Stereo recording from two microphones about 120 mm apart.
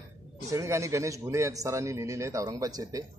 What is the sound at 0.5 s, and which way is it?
A man's voice, 25° right (ahead or behind).